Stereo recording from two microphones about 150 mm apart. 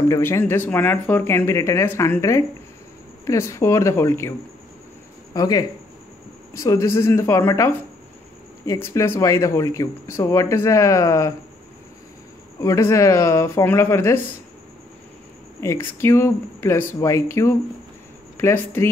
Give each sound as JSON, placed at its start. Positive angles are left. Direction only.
{"t": 0.1, "sound": "speech", "side_deg": 15}
{"t": 5.3, "sound": "speech", "side_deg": 25}
{"t": 12.5, "sound": "speech", "side_deg": 20}
{"t": 15.6, "sound": "speech", "side_deg": 20}